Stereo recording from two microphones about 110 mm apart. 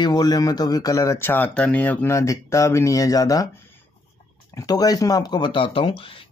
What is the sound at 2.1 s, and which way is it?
Speech, 30° left (ahead or behind).